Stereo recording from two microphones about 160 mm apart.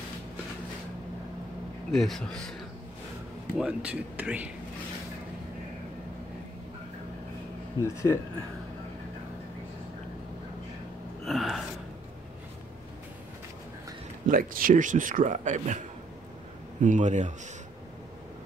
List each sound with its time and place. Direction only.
1.9 s speech: centre (ahead or behind)
3.5 s speech: 5° right (ahead or behind)
7.8 s speech: 20° left (ahead or behind)
11.2 s gasp: centre (ahead or behind)
14.2 s speech: 60° right (ahead or behind)
16.8 s speech: 50° right (ahead or behind)